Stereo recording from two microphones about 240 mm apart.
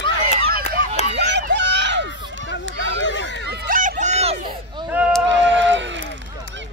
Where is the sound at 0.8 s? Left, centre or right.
Right.